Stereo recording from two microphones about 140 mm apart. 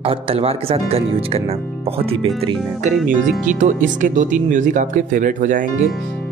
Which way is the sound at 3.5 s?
65° right (ahead or behind).